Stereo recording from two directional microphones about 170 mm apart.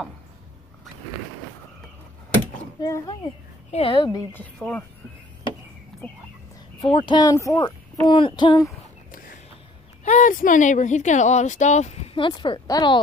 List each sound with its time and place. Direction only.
2.8 s speech: 20° left (ahead or behind)
3.7 s speech: 30° left (ahead or behind)
4.6 s speech: 5° left (ahead or behind)
6.0 s speech: 10° left (ahead or behind)
6.8 s speech: 30° left (ahead or behind)
7.6 s speech: 30° left (ahead or behind)
10.0 s speech: 50° left (ahead or behind); by 13.0 s 25° left (ahead or behind)